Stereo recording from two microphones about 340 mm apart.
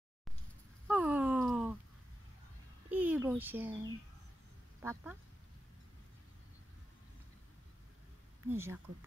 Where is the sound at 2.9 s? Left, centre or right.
Centre.